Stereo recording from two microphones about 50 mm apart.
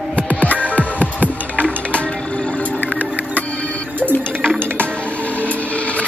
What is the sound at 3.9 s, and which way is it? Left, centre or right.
Music, right.